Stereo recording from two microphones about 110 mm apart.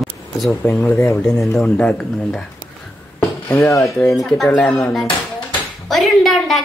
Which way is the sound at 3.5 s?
25° left (ahead or behind).